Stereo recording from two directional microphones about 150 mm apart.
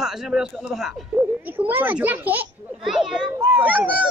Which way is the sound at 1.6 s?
10° right (ahead or behind).